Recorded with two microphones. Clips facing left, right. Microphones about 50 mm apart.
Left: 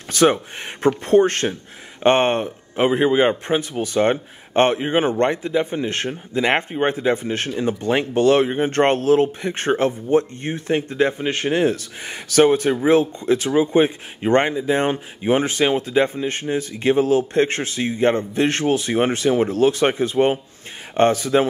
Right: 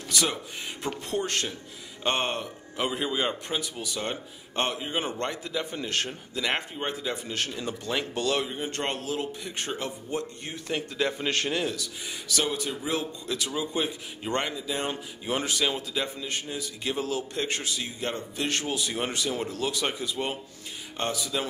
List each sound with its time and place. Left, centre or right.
0.1 s a man's voice: left
11.6 s a man's voice: left